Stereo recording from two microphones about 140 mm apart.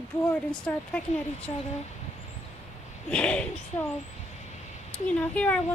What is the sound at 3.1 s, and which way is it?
Speech, 5° left (ahead or behind).